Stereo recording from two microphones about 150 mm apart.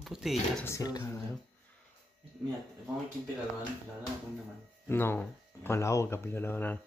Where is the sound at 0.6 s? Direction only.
25° left (ahead or behind).